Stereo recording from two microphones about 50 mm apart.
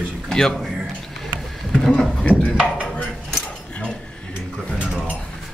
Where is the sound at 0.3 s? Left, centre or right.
Centre.